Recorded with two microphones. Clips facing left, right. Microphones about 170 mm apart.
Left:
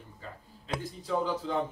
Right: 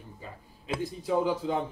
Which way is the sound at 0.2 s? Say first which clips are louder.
Right 1 dB; 15° right (ahead or behind).